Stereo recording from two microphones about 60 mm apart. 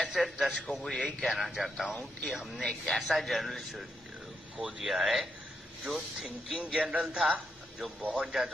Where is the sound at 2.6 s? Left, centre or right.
Centre.